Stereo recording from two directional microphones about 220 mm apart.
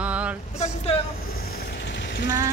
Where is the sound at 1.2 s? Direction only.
40° left (ahead or behind).